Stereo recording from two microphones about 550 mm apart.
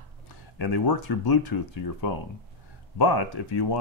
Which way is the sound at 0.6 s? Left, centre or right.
Left.